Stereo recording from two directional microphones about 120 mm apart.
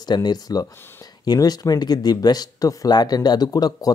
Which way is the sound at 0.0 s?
35° left (ahead or behind).